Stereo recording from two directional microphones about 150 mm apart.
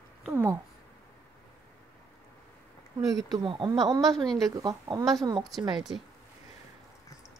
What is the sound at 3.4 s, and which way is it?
Speech, 35° right (ahead or behind).